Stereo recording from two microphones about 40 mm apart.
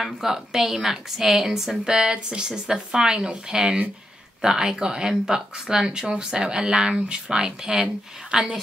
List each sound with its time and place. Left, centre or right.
0.0 s a woman's voice: centre
1.9 s a woman's voice: right